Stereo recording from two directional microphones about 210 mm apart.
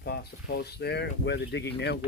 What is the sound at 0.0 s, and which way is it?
Speech, 50° left (ahead or behind).